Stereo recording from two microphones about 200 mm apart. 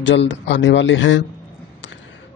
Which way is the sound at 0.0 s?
65° left (ahead or behind).